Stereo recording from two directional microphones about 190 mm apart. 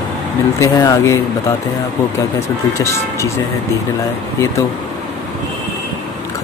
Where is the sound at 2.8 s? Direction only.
15° left (ahead or behind).